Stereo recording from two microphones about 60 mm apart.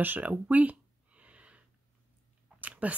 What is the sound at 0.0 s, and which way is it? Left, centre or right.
Speech, right.